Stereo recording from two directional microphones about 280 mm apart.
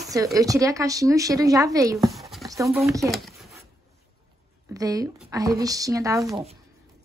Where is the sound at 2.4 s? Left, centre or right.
Centre.